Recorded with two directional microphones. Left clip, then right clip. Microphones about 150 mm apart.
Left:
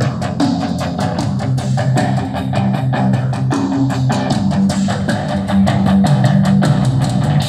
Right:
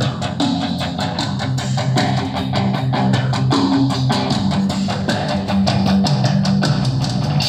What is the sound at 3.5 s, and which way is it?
Music, 25° left (ahead or behind).